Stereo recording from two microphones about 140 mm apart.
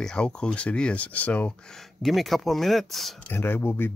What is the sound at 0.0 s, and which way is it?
Speech, 5° left (ahead or behind).